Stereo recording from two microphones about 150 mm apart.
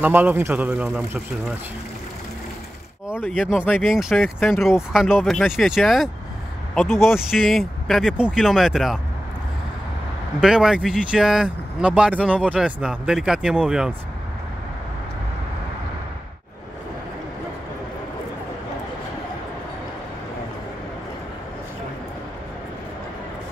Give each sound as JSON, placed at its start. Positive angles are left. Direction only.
{"t": 0.0, "sound": "speech", "side_deg": -10}
{"t": 3.6, "sound": "speech", "side_deg": 5}
{"t": 10.4, "sound": "speech", "side_deg": -5}